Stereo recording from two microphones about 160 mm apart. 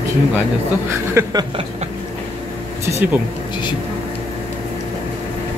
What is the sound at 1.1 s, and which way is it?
Speech, 20° right (ahead or behind).